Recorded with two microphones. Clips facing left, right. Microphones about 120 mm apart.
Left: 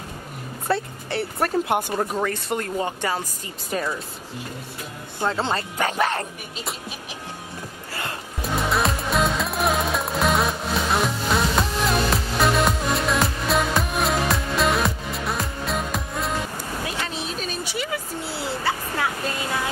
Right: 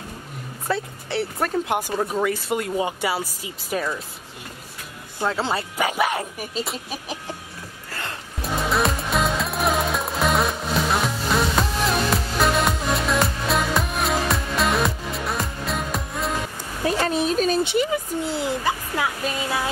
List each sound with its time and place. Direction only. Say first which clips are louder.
0.7 s speech: left 1 dB; centre (ahead or behind)
5.2 s speech: even; 5° right (ahead or behind)
7.9 s music: left 1 dB; 5° left (ahead or behind)
16.8 s a sound: right 12 dB; 45° right (ahead or behind)
17.6 s speech: right 6 dB; 25° right (ahead or behind)